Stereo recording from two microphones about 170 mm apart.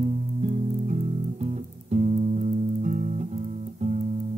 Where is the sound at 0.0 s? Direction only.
45° right (ahead or behind).